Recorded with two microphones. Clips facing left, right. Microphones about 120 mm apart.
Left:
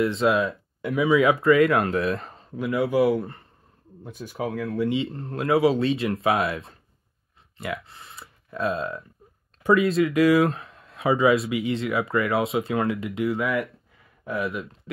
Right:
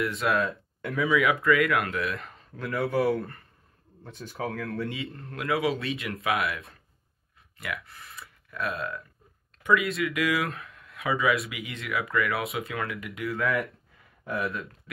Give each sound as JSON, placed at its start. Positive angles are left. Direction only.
{"t": 0.0, "sound": "speech", "side_deg": 25}
{"t": 2.7, "sound": "speech", "side_deg": 0}
{"t": 4.0, "sound": "speech", "side_deg": 10}
{"t": 4.5, "sound": "speech", "side_deg": 0}
{"t": 4.8, "sound": "speech", "side_deg": 25}
{"t": 14.5, "sound": "speech", "side_deg": 25}